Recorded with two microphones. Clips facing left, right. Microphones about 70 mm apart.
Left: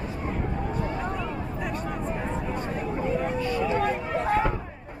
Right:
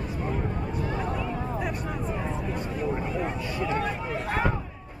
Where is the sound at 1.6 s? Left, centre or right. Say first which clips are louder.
Even; centre.